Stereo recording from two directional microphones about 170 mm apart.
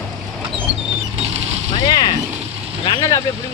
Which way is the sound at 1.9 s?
25° left (ahead or behind).